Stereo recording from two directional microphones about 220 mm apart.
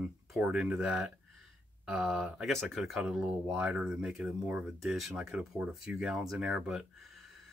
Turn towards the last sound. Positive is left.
turn(degrees=-5)  # may be behind; listen again after turning